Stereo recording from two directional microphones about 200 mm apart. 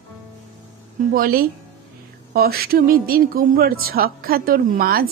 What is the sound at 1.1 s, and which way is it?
A woman's voice, 45° right (ahead or behind).